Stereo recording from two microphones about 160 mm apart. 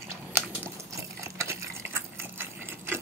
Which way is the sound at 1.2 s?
15° right (ahead or behind).